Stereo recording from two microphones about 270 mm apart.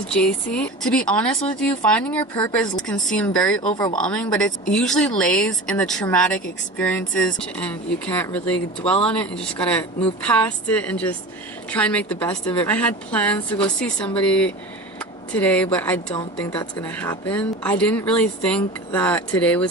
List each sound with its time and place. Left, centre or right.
0.0 s speech: centre